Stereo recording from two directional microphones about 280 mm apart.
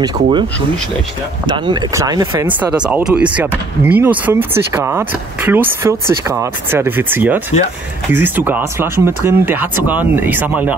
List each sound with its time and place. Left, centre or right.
0.0 s speech: centre